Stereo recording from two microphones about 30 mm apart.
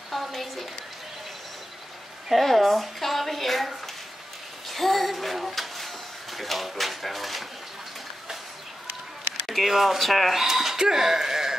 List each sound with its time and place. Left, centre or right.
0.1 s a sound: centre
2.3 s a woman's voice: centre
4.6 s child singing: centre
6.3 s a sound: centre
9.5 s speech: centre
10.4 s speech: centre